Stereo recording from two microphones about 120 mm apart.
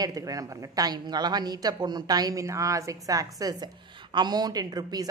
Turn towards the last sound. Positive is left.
turn(degrees=-35)  # may be behind; listen again after turning